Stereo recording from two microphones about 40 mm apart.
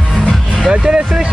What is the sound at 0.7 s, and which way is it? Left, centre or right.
Speech, right.